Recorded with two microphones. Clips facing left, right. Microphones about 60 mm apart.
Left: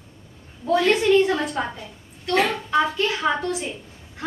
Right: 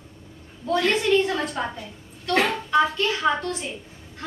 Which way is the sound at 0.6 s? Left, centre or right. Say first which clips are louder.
Left 3 dB; centre.